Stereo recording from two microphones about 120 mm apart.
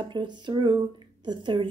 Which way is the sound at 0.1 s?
40° right (ahead or behind).